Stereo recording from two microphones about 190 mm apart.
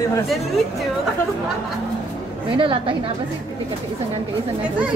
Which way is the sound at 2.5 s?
25° right (ahead or behind).